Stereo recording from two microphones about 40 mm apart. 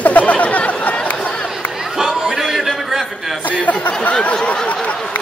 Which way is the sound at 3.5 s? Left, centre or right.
Left.